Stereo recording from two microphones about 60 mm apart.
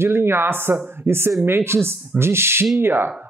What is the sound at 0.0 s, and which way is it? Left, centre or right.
Speech, right.